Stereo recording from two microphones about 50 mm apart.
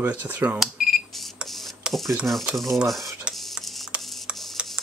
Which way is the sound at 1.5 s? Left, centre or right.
Centre.